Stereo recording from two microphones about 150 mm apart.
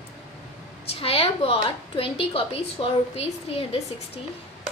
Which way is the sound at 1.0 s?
40° left (ahead or behind).